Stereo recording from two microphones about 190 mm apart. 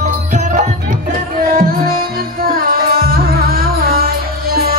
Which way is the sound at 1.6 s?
50° right (ahead or behind).